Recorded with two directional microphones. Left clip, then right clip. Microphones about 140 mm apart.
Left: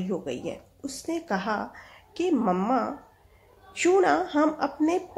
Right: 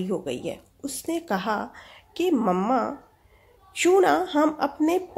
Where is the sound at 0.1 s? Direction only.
30° right (ahead or behind).